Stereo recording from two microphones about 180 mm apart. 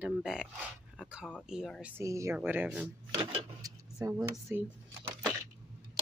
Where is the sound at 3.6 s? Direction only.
20° right (ahead or behind).